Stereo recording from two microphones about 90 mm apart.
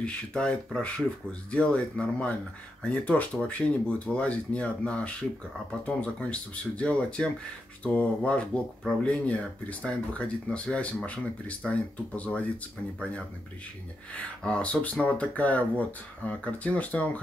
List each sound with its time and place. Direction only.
0.0 s speech: 10° left (ahead or behind)
14.1 s speech: 15° left (ahead or behind)